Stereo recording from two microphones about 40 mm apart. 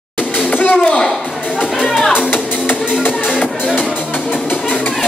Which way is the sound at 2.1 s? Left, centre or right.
Left.